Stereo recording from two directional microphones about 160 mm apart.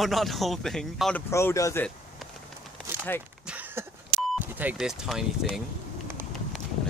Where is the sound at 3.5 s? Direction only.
10° right (ahead or behind).